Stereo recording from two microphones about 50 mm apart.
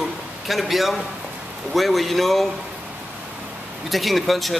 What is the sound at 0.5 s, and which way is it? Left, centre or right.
Speech, centre.